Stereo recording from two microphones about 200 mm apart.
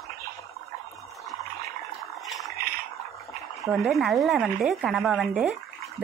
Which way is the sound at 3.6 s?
Centre (ahead or behind).